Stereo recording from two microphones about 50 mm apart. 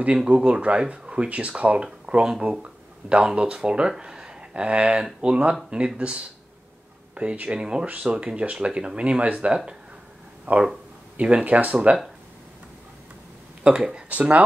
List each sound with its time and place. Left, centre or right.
0.2 s speech: right
13.7 s speech: right